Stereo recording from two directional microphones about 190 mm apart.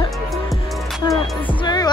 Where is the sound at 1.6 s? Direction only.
20° left (ahead or behind).